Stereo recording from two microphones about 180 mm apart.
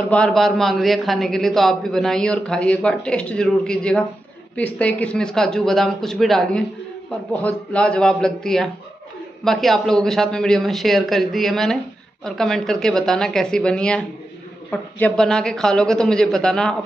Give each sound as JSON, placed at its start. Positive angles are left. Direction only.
{"t": 0.1, "sound": "a man's voice", "side_deg": 5}